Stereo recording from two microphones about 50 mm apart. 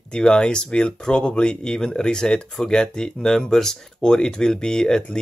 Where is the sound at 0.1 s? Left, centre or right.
Centre.